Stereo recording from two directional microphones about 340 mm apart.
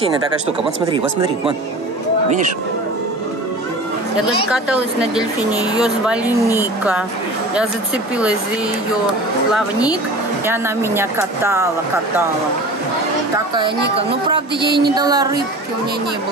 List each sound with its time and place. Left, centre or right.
4.5 s speech: centre
9.5 s speech: centre
13.9 s speech: centre